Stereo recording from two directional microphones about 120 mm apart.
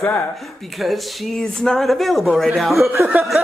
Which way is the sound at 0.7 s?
Centre (ahead or behind).